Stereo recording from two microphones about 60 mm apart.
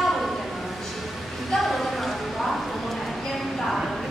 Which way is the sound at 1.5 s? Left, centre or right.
Centre.